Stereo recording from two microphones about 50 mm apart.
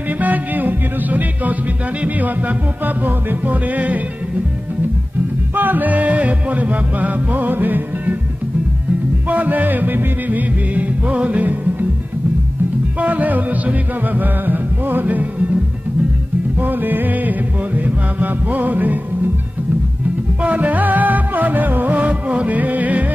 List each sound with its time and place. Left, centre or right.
0.2 s music: right
3.3 s music: right
5.6 s music: right
9.3 s music: right
13.0 s music: right
16.6 s music: right
20.4 s music: right